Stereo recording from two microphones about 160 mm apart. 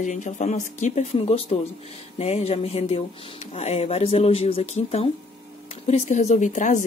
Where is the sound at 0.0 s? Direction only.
50° left (ahead or behind).